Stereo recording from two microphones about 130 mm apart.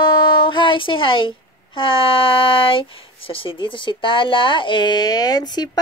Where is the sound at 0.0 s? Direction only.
35° left (ahead or behind).